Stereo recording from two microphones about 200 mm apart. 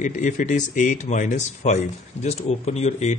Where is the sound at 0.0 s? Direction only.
40° left (ahead or behind).